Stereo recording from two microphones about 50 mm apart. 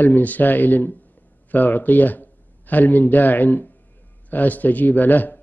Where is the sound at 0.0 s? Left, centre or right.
Left.